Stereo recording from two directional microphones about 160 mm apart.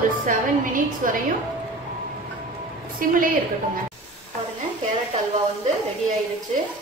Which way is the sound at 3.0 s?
60° right (ahead or behind).